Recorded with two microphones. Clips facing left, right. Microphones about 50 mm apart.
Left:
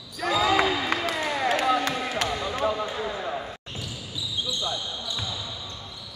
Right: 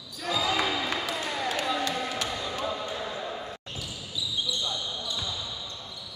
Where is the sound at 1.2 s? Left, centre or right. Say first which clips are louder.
Left 5 dB; left.